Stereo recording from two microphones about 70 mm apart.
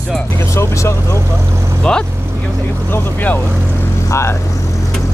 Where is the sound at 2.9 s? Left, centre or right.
Left.